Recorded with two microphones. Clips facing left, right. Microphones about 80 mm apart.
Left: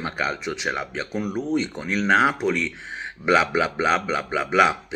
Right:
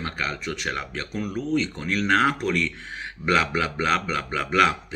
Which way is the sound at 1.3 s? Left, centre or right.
Left.